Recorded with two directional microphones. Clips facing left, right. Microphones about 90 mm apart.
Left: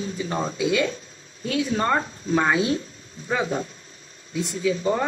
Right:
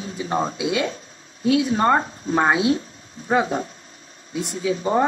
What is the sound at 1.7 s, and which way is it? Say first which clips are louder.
Speech: right 4 dB; 30° right (ahead or behind).